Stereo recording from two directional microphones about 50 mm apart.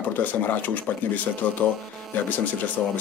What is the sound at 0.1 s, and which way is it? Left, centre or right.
Speech, left.